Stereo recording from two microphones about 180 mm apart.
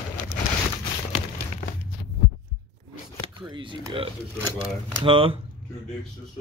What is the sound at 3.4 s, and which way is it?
Speech, 25° right (ahead or behind).